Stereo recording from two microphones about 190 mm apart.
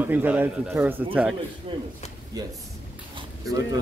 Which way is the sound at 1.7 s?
25° right (ahead or behind).